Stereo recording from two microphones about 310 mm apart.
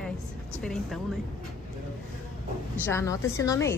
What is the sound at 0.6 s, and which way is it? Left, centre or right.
Speech, centre.